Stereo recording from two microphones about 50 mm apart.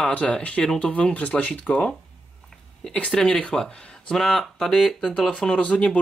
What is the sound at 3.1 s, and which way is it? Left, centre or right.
Speech, centre.